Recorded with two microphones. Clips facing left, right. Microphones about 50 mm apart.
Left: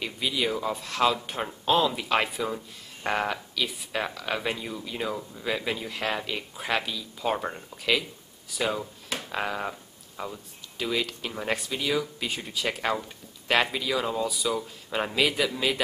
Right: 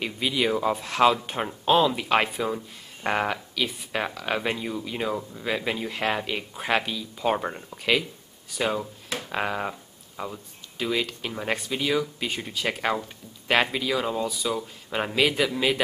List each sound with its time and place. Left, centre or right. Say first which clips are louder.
0.0 s speech: right 3 dB; centre